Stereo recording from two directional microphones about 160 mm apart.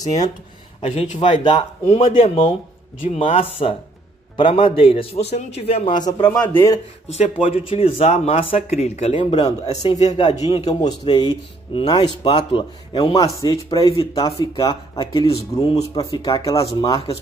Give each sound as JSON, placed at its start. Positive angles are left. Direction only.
{"t": 0.8, "sound": "a man's voice", "side_deg": 40}
{"t": 6.3, "sound": "speech", "side_deg": 10}
{"t": 7.1, "sound": "speech", "side_deg": 40}
{"t": 10.5, "sound": "speech", "side_deg": 25}
{"t": 16.5, "sound": "speech", "side_deg": 35}